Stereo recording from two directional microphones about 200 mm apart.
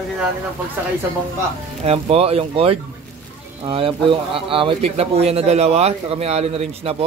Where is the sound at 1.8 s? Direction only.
30° right (ahead or behind).